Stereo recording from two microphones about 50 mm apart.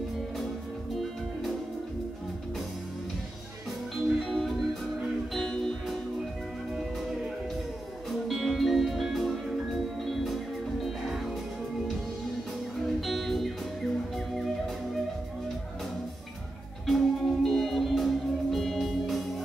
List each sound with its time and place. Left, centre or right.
3.9 s music: centre
8.3 s music: centre
13.0 s music: centre
16.8 s music: centre